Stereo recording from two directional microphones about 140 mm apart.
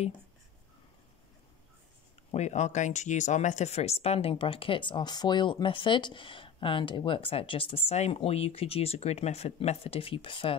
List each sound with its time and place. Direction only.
2.3 s speech: 55° left (ahead or behind); by 10.5 s 40° left (ahead or behind)